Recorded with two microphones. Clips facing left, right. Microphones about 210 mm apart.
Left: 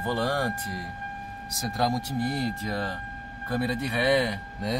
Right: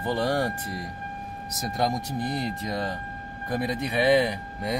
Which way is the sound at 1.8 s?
20° right (ahead or behind).